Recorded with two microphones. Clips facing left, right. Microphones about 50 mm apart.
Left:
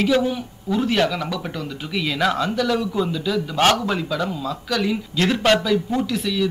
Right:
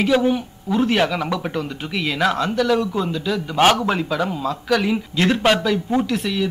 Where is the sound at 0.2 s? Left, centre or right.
Centre.